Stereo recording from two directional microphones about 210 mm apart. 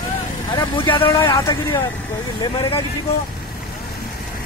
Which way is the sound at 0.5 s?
20° left (ahead or behind).